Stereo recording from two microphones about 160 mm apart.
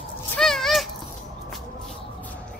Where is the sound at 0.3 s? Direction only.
5° left (ahead or behind).